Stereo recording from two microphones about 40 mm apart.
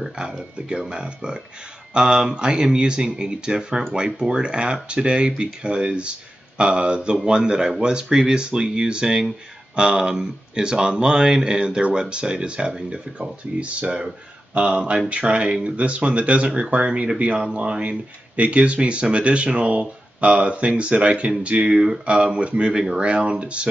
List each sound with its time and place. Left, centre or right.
0.1 s speech: centre
13.6 s speech: right